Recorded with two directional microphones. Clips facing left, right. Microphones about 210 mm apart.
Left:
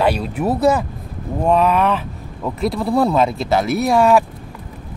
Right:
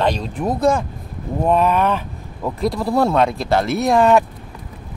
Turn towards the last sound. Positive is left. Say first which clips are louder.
# even
turn(degrees=0)  # may be behind; listen again after turning